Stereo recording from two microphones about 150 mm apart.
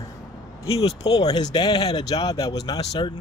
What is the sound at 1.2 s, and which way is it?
Speech, 25° left (ahead or behind).